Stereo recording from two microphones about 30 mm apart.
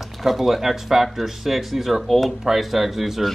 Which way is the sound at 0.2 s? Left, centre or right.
Centre.